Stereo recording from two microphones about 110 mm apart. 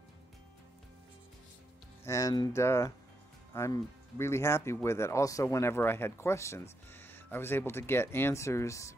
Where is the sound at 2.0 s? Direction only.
30° left (ahead or behind).